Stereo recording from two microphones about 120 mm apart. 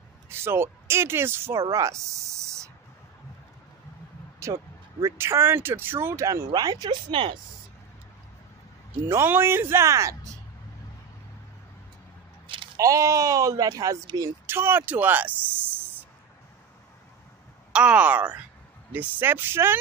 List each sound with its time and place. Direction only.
0.3 s speech: 20° right (ahead or behind)
4.4 s speech: 25° right (ahead or behind); by 7.3 s 45° right (ahead or behind)
9.1 s speech: 20° right (ahead or behind)
12.7 s speech: 25° right (ahead or behind)
17.7 s speech: 10° right (ahead or behind)